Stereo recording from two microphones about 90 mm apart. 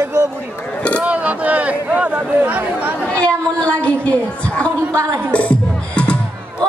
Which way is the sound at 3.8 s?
10° left (ahead or behind).